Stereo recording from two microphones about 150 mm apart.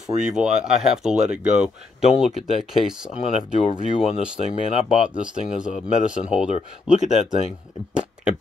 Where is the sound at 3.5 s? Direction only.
40° left (ahead or behind).